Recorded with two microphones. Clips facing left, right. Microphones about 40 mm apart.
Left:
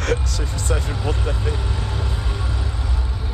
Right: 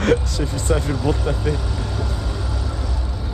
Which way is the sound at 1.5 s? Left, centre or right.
Left.